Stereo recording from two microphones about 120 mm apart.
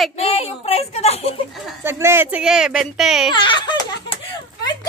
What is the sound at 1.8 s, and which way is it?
Speech, 20° right (ahead or behind).